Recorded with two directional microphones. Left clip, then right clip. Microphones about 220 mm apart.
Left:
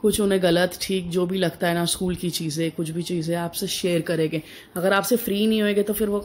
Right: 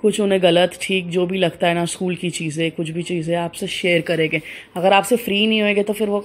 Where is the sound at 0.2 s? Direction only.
Centre (ahead or behind).